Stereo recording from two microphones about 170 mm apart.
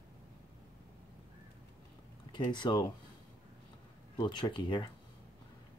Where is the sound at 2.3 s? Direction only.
25° left (ahead or behind).